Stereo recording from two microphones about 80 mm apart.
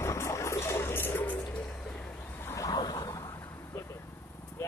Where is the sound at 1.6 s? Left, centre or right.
Centre.